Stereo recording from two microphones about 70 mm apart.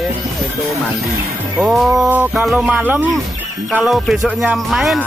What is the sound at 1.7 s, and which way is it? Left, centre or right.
Music, centre.